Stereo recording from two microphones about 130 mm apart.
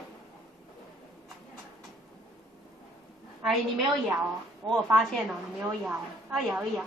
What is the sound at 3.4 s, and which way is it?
A woman's voice, centre (ahead or behind).